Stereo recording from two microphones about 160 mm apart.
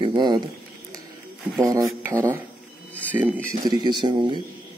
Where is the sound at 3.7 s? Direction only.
25° right (ahead or behind).